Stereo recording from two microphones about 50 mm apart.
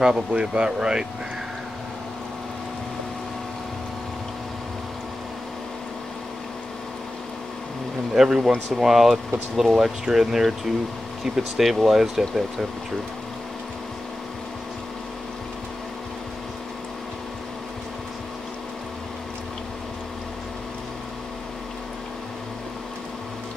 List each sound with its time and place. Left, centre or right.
0.0 s speech: centre
8.1 s speech: centre